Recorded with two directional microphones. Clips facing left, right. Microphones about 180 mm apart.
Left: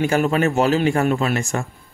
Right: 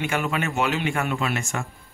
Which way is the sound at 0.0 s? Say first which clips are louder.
Left 8 dB; 40° left (ahead or behind).